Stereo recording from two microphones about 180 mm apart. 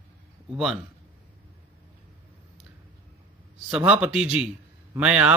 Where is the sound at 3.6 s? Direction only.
5° right (ahead or behind).